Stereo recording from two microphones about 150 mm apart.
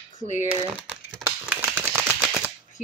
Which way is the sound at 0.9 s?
10° right (ahead or behind).